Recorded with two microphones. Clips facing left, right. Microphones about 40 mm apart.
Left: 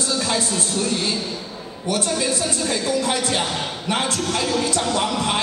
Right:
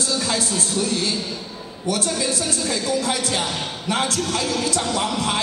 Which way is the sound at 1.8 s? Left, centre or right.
Left.